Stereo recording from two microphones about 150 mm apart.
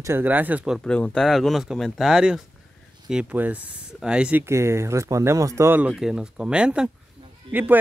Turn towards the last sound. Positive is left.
turn(degrees=-10)  # may be behind; listen again after turning